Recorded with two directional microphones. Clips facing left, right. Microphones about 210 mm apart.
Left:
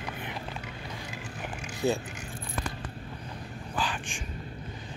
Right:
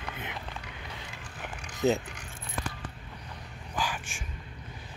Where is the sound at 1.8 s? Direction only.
20° right (ahead or behind).